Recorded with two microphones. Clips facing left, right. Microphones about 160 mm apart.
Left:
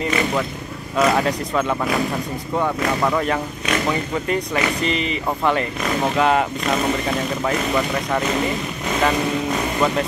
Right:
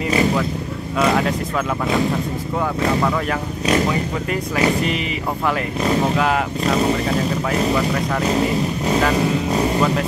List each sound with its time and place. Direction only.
0.9 s speech: centre (ahead or behind)
3.0 s speech: 5° left (ahead or behind)
6.1 s speech: centre (ahead or behind)
6.6 s speech: 35° right (ahead or behind)
7.7 s speech: centre (ahead or behind)
8.2 s speech: 35° right (ahead or behind)